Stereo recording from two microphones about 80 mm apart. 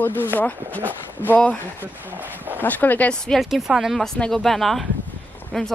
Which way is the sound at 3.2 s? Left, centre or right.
Centre.